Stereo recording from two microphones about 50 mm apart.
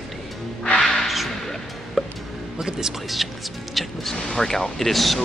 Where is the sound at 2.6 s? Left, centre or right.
Centre.